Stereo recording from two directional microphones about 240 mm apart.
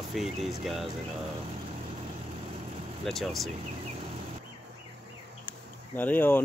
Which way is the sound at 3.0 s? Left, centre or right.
Centre.